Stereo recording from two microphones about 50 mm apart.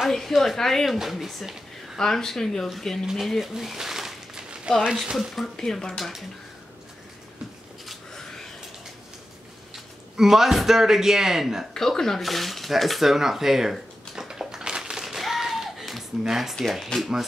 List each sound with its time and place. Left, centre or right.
0.1 s speech: centre
2.0 s speech: centre
3.1 s a sound: centre
5.3 s speech: centre
8.1 s a sound: centre
10.1 s a man's voice: centre
11.7 s dishes: centre
16.7 s speech: centre